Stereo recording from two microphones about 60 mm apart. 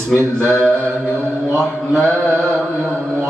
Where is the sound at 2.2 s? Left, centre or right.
Right.